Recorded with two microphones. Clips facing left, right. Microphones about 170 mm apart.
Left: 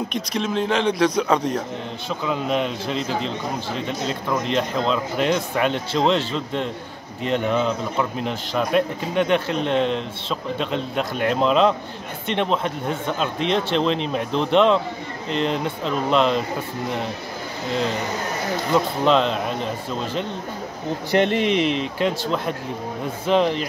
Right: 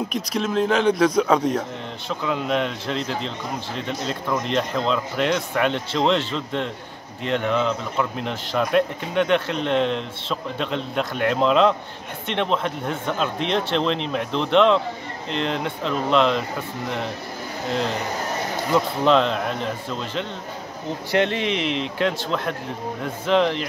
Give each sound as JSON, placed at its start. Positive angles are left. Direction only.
{"t": 0.1, "sound": "speech", "side_deg": 0}
{"t": 4.3, "sound": "speech", "side_deg": 0}
{"t": 18.7, "sound": "speech", "side_deg": 0}
{"t": 21.4, "sound": "speech", "side_deg": 45}
{"t": 23.2, "sound": "speech", "side_deg": 5}